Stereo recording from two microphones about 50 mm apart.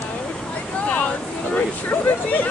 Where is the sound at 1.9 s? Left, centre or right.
Left.